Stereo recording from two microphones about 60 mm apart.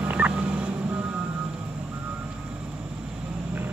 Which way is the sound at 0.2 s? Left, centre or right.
Right.